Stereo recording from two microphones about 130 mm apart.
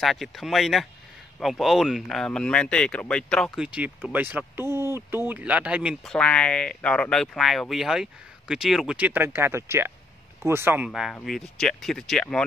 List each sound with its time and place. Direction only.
0.0 s speech: centre (ahead or behind)
3.6 s speech: 10° right (ahead or behind)
6.0 s speech: 10° left (ahead or behind)
8.9 s speech: 15° right (ahead or behind)
10.9 s speech: centre (ahead or behind)